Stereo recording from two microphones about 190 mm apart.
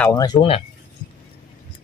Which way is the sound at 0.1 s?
20° left (ahead or behind).